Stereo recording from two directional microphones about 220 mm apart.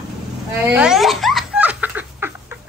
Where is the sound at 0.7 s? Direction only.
5° right (ahead or behind).